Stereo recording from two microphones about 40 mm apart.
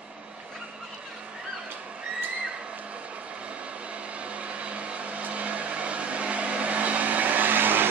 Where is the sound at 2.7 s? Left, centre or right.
Right.